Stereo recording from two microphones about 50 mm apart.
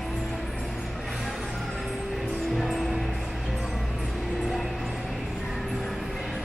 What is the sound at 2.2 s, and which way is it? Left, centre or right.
Music, centre.